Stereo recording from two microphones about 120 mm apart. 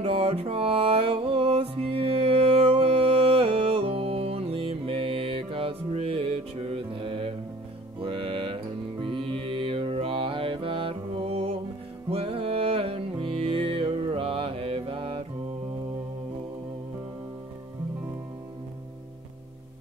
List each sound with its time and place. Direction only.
0.0 s music: 50° right (ahead or behind)